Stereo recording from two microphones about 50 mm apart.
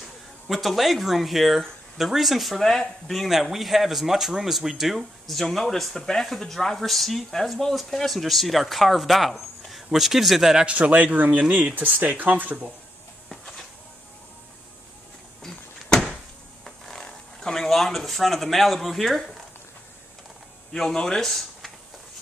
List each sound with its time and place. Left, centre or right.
0.5 s speech: centre
10.6 s speech: right
16.6 s a sound: centre
20.7 s speech: centre